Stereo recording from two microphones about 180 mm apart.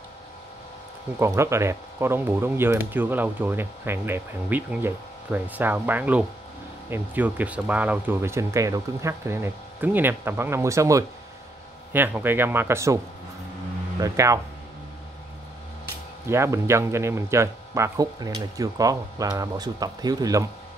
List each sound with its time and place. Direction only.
1.2 s speech: 15° right (ahead or behind)
16.3 s speech: 15° right (ahead or behind)